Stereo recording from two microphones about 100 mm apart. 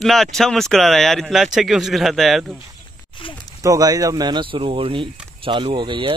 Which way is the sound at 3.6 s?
35° right (ahead or behind).